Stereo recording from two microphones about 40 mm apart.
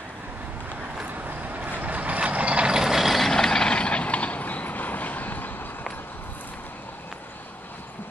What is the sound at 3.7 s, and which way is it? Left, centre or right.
Vehicle, left.